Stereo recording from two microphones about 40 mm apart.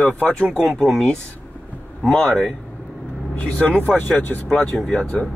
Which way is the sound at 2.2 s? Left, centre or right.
Left.